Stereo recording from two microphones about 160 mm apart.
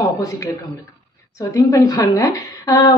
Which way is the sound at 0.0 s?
20° left (ahead or behind).